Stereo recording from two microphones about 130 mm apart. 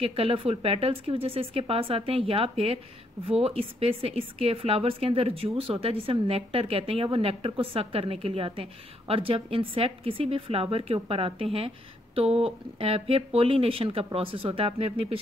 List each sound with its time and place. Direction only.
0.0 s a woman's voice: 45° right (ahead or behind)